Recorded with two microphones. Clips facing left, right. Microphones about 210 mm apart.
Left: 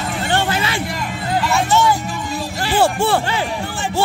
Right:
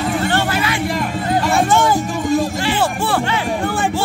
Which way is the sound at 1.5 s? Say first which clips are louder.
Right 1 dB; 50° right (ahead or behind).